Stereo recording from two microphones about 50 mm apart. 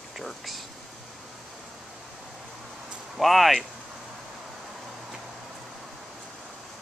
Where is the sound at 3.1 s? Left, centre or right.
Centre.